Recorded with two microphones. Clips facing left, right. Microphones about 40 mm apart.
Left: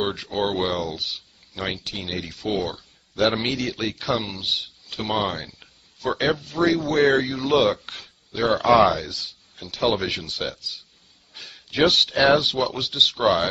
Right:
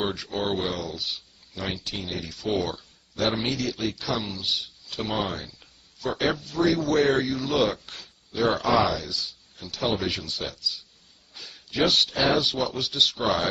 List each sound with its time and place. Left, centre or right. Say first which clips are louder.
0.0 s speech: left 3 dB; left
0.6 s speech: left 5 dB; left
2.2 s speech: even; left
3.2 s speech: left 4 dB; left
5.1 s a sound: left 5 dB; left
6.0 s speech: left 3 dB; left